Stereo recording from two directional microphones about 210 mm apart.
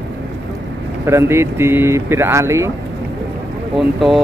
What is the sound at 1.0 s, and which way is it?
Speech, 10° right (ahead or behind).